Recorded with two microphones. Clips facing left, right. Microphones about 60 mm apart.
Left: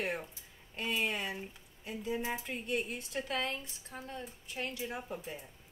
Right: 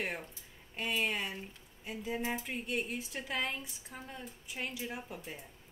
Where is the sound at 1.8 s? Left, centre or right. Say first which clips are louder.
Left 1 dB; centre.